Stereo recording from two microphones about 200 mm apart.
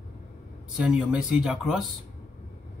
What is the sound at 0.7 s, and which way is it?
Speech, 5° right (ahead or behind).